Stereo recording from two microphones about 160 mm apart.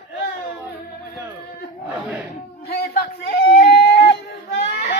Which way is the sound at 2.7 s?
70° left (ahead or behind).